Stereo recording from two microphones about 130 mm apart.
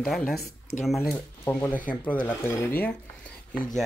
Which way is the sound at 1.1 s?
15° left (ahead or behind).